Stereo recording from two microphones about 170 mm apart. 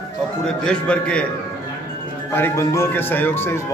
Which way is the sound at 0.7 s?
5° left (ahead or behind).